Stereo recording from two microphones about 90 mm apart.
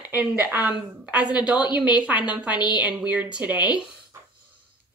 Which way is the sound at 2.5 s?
55° left (ahead or behind).